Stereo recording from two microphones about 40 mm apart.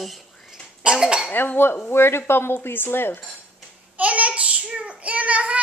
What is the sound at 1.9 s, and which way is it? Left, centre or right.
Speech, left.